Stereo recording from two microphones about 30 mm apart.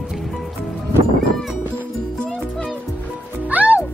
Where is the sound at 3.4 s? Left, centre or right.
Right.